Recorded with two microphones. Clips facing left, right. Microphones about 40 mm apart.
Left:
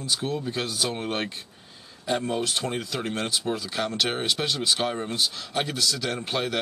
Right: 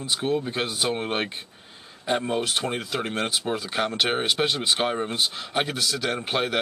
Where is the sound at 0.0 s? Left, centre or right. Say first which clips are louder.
Right 3 dB; right.